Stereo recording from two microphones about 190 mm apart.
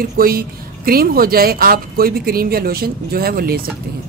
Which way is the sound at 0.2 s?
50° right (ahead or behind).